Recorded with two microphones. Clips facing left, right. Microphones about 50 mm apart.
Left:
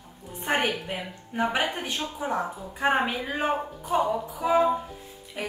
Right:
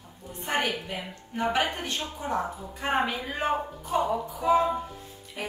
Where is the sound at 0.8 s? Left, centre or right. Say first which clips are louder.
Left 2 dB; centre.